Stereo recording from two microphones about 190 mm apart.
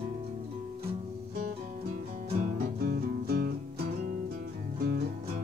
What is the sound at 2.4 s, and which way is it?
Music, 55° right (ahead or behind).